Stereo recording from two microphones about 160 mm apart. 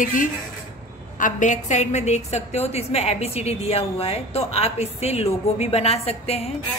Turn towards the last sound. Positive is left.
turn(degrees=40)  # may be behind; listen again after turning